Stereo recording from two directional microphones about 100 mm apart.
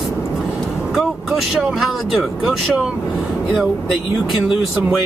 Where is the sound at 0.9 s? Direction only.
Centre (ahead or behind).